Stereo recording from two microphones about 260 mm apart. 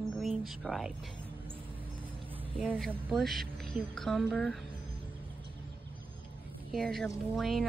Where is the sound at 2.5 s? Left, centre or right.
Centre.